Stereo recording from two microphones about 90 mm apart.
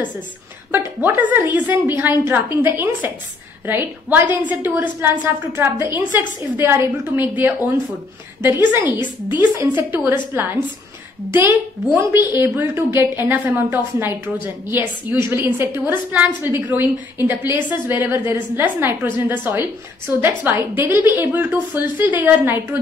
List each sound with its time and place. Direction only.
0.7 s a woman's voice: 25° right (ahead or behind)
8.9 s a woman's voice: 55° left (ahead or behind)
9.4 s a woman's voice: 20° right (ahead or behind)
11.3 s a woman's voice: 25° right (ahead or behind)